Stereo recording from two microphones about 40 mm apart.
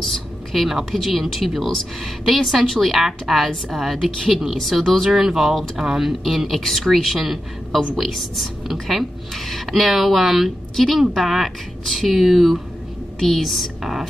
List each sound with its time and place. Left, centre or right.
0.0 s a woman's voice: centre
5.8 s speech: centre
6.0 s a woman's voice: centre